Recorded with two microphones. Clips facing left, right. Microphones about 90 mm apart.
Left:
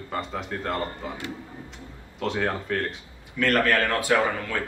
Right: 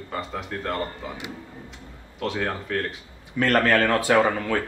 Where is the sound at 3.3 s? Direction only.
35° right (ahead or behind).